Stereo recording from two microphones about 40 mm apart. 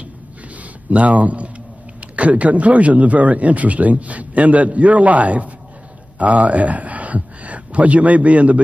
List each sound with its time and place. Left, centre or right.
0.8 s a man's voice: right